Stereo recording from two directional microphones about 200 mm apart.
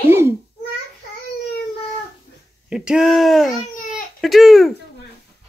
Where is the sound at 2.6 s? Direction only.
5° right (ahead or behind).